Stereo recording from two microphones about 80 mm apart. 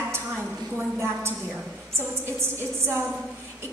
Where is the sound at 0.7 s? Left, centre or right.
Right.